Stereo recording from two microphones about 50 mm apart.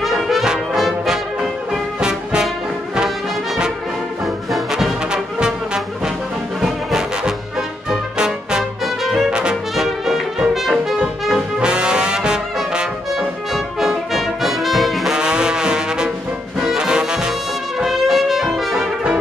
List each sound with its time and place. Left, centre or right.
0.0 s brass instrument: centre
4.5 s music: centre
6.6 s brass instrument: centre
8.2 s music: centre
8.8 s brass instrument: centre
9.3 s brass instrument: centre
9.8 s music: centre
11.6 s brass instrument: centre
13.5 s brass instrument: centre
15.1 s trombone: centre
16.5 s brass instrument: centre
17.7 s brass instrument: centre